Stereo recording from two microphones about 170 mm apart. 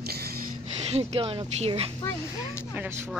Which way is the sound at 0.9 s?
35° right (ahead or behind).